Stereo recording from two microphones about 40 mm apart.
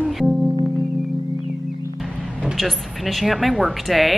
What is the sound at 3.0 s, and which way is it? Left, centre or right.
A woman's voice, centre.